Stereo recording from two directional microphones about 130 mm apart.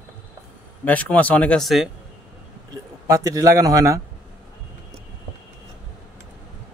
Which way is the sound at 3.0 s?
25° right (ahead or behind).